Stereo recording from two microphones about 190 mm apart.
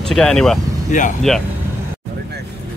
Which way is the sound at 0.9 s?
40° left (ahead or behind).